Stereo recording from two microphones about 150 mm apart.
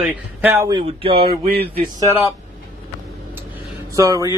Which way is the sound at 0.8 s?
35° right (ahead or behind).